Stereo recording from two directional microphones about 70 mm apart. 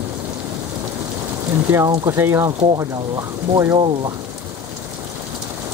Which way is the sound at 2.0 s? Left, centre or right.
Right.